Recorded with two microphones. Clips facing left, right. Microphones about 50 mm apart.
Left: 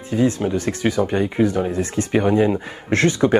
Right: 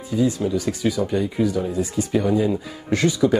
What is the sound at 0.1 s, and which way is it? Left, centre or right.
Speech, left.